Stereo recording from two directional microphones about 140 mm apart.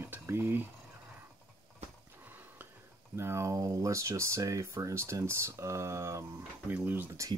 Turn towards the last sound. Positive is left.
turn(degrees=-15)  # may be behind; listen again after turning